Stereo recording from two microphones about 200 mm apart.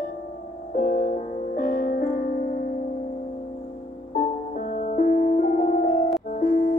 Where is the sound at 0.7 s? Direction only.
40° left (ahead or behind).